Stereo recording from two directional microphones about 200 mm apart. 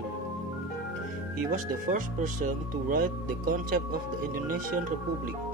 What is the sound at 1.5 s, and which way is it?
Speech, 40° right (ahead or behind).